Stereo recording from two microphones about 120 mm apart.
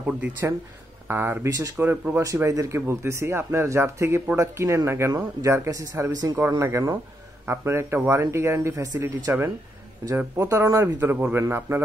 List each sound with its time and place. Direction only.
0.0 s speech: 10° right (ahead or behind)